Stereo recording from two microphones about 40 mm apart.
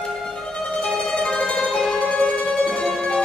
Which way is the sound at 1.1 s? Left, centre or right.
Left.